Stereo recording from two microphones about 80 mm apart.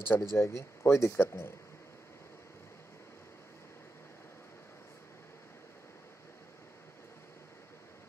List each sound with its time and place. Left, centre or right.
0.1 s speech: left